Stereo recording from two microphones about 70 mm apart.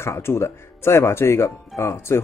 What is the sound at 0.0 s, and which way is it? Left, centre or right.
Speech, left.